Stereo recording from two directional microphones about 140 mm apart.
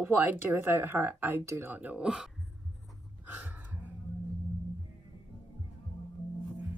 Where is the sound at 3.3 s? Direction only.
10° right (ahead or behind).